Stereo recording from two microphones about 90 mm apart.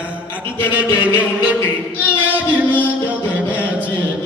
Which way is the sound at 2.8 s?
15° right (ahead or behind).